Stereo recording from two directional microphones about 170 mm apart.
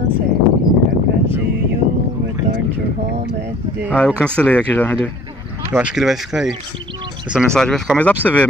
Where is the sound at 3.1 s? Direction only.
75° right (ahead or behind).